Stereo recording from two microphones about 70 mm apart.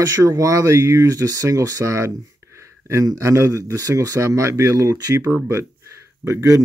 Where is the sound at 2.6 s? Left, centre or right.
Right.